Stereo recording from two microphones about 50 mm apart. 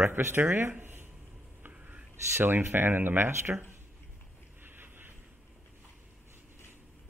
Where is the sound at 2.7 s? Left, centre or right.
Right.